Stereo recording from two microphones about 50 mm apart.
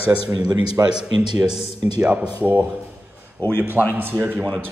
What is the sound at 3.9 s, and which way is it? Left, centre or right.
Speech, right.